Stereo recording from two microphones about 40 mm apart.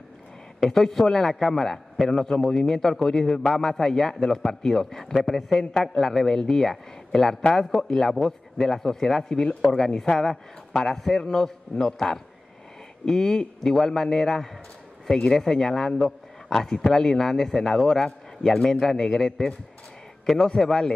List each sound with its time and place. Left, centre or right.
0.7 s a man's voice: centre